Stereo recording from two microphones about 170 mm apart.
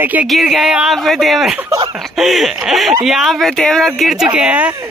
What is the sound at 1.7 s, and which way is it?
Snicker, 20° right (ahead or behind).